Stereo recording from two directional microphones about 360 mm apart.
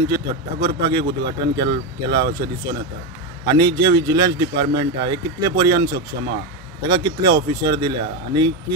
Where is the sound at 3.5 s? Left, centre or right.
Centre.